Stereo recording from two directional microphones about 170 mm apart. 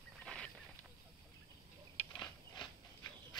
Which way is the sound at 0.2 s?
5° left (ahead or behind).